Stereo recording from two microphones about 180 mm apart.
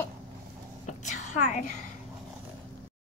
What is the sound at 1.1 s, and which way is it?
Speech, 40° left (ahead or behind).